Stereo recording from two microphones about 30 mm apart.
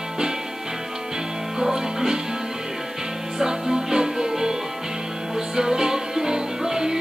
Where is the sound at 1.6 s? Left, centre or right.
Centre.